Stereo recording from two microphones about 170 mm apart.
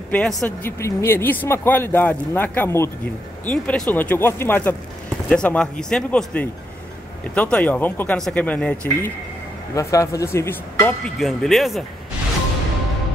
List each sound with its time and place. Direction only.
0.1 s speech: 5° left (ahead or behind)
0.7 s speech: 15° left (ahead or behind)
11.1 s speech: centre (ahead or behind)